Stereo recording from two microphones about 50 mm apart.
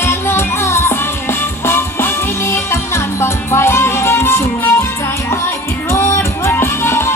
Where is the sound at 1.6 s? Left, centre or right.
Left.